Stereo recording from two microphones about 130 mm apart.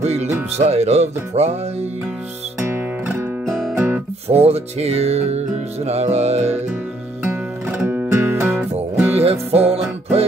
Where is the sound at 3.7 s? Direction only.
15° right (ahead or behind).